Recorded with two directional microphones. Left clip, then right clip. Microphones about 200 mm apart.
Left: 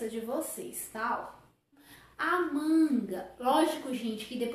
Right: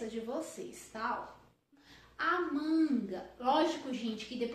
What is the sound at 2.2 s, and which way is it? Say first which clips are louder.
A woman's voice: left 3 dB; centre (ahead or behind).